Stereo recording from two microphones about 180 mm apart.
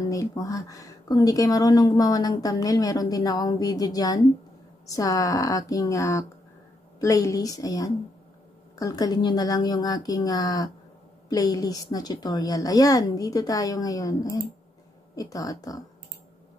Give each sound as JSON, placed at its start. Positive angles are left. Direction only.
{"t": 0.0, "sound": "speech", "side_deg": 20}